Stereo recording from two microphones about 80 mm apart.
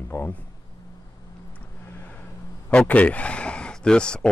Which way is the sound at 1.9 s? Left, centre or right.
Left.